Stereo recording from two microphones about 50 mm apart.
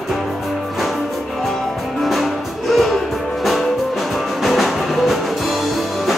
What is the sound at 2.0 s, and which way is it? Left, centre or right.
Music, centre.